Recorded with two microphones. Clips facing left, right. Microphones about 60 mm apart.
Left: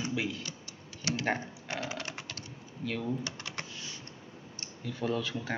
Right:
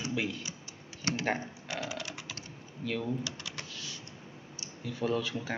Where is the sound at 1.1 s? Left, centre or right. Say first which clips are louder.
Even; right.